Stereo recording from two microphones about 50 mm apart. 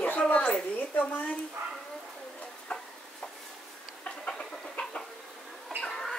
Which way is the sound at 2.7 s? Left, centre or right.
Left.